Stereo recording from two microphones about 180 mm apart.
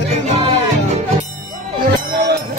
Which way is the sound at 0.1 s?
35° right (ahead or behind).